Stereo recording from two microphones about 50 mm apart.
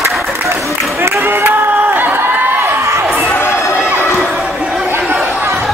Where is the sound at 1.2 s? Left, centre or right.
Right.